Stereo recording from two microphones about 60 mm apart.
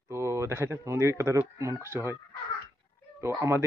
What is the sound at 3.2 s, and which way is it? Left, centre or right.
Speech, right.